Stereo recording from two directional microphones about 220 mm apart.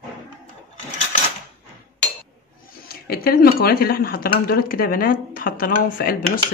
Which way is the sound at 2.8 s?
45° left (ahead or behind).